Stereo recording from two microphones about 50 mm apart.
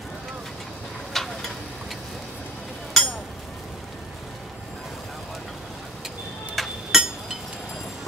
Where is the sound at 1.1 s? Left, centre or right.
Centre.